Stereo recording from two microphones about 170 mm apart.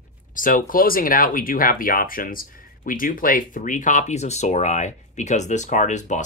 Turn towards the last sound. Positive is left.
turn(degrees=45)  # may be behind; listen again after turning